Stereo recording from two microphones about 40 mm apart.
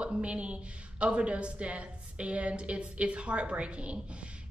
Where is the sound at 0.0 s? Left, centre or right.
Right.